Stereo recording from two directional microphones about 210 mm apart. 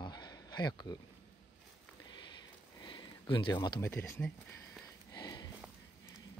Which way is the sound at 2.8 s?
20° left (ahead or behind).